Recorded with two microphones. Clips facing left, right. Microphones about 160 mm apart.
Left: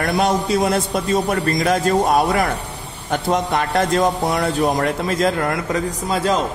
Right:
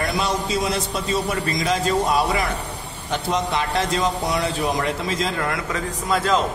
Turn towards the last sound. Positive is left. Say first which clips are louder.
# left 2 dB
turn(degrees=35)  # may be behind; listen again after turning